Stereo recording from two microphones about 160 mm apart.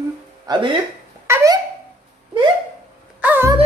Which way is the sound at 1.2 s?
15° right (ahead or behind).